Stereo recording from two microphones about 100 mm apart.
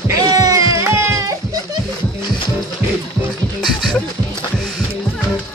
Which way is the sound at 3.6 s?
Centre (ahead or behind).